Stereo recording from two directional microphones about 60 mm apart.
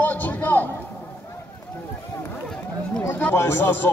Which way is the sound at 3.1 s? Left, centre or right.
Left.